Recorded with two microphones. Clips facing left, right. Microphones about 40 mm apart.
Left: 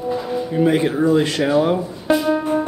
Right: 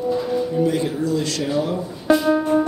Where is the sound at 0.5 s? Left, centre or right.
Left.